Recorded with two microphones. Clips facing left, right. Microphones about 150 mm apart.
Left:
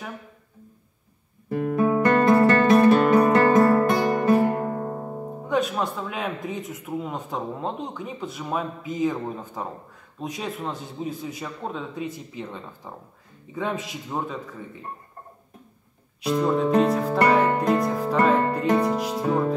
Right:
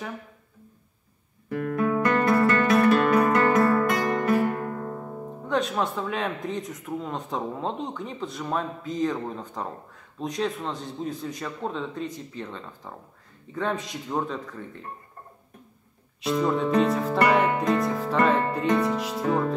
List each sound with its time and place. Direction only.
1.5 s music: 20° left (ahead or behind)
5.5 s speech: 5° left (ahead or behind)
16.2 s speech: centre (ahead or behind)
17.3 s music: centre (ahead or behind)
18.9 s speech: centre (ahead or behind)